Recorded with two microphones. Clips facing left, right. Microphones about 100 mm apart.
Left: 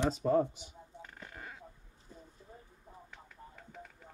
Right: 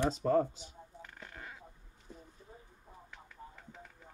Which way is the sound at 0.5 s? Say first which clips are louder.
Even; 15° left (ahead or behind).